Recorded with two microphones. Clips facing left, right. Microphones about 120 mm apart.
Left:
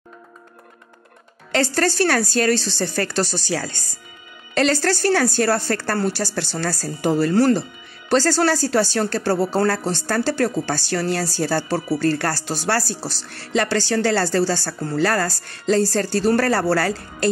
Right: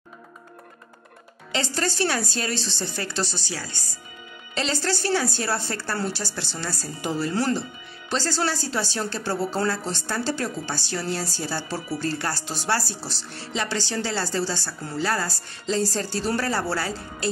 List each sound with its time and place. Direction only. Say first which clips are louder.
1.5 s speech: left 7 dB; 60° left (ahead or behind); by 3.7 s 90° left
4.6 s a woman's voice: left 8 dB; 60° left (ahead or behind)
6.8 s speech: left 8 dB; 55° left (ahead or behind)
8.1 s a woman's voice: left 9 dB; 80° left
8.4 s a woman's voice: left 8 dB; 65° left (ahead or behind)
13.3 s a woman's voice: left 8 dB; 65° left (ahead or behind)
16.7 s a woman's voice: left 7 dB; 80° left